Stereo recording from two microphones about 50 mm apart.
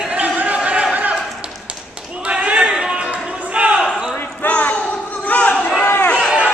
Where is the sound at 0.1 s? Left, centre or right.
Right.